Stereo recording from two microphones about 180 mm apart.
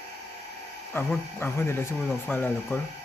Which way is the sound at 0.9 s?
10° left (ahead or behind).